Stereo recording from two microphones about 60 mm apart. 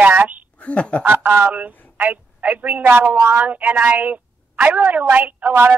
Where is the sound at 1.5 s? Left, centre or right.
Right.